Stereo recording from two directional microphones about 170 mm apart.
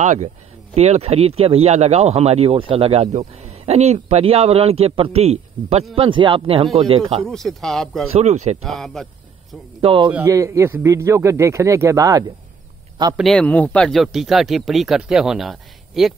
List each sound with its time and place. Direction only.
0.0 s a man's voice: 45° right (ahead or behind)
7.2 s speech: centre (ahead or behind)
8.1 s a man's voice: 40° right (ahead or behind)
8.6 s speech: centre (ahead or behind)
9.8 s a man's voice: 30° right (ahead or behind)
10.1 s a man's voice: 20° right (ahead or behind)
13.1 s speech: centre (ahead or behind)